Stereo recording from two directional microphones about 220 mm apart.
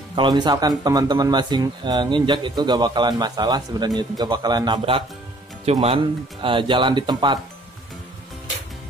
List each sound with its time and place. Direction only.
0.1 s speech: 20° right (ahead or behind)